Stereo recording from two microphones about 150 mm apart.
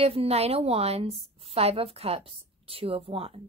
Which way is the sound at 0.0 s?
40° right (ahead or behind).